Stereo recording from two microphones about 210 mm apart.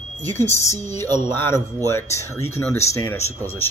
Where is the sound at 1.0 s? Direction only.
20° right (ahead or behind).